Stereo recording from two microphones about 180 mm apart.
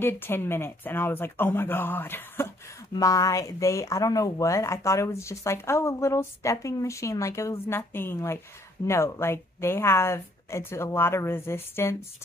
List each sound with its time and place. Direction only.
0.0 s speech: 10° left (ahead or behind)